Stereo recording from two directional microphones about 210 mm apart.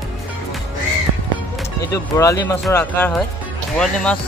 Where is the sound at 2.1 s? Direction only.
15° left (ahead or behind).